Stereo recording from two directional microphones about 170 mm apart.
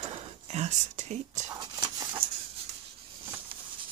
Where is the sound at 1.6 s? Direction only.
25° right (ahead or behind).